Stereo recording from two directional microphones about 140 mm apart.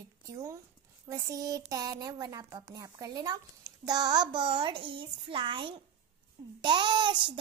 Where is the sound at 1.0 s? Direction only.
25° right (ahead or behind).